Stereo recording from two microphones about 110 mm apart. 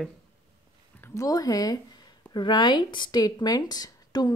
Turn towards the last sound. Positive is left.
turn(degrees=40)  # may be behind; listen again after turning